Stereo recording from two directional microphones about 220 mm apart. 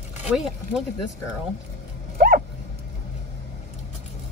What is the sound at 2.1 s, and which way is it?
Dog, 40° right (ahead or behind).